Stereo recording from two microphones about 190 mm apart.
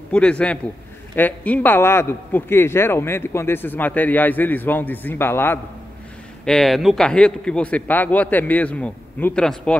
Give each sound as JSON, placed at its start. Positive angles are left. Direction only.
{"t": 0.1, "sound": "a man's voice", "side_deg": 5}